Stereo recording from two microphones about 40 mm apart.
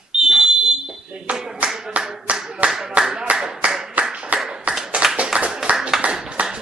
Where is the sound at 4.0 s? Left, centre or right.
Right.